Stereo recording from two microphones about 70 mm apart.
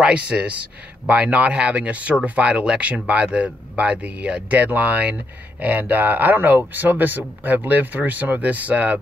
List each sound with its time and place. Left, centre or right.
0.0 s speech: centre